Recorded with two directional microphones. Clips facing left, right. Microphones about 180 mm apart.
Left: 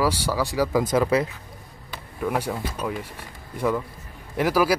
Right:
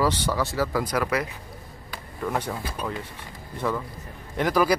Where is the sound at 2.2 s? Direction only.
10° left (ahead or behind).